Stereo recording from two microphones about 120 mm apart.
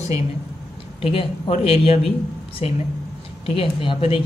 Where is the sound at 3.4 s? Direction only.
45° left (ahead or behind).